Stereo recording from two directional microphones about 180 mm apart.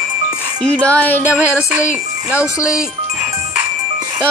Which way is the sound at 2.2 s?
5° right (ahead or behind).